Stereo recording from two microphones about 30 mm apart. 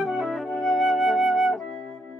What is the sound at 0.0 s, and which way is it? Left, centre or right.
Flute, centre.